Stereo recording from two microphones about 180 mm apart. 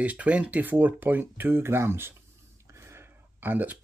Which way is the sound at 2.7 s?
15° right (ahead or behind).